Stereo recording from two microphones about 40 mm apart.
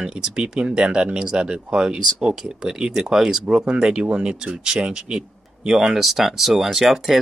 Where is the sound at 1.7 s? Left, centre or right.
Centre.